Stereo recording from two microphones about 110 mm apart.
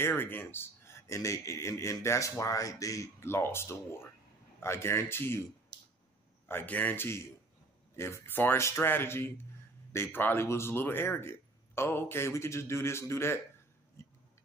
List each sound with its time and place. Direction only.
0.0 s a man's voice: 20° left (ahead or behind)
6.4 s a man's voice: 20° left (ahead or behind)